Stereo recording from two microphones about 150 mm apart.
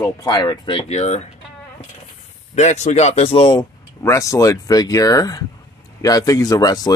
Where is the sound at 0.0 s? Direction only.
25° left (ahead or behind); by 1.2 s 50° left (ahead or behind).